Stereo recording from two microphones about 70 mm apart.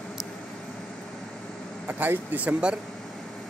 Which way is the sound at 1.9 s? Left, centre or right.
Right.